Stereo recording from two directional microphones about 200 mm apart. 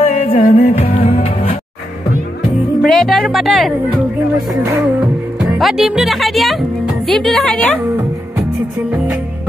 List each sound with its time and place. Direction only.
0.0 s music: 35° left (ahead or behind)
2.8 s music: centre (ahead or behind)
4.6 s speech: centre (ahead or behind)
8.9 s music: 5° right (ahead or behind)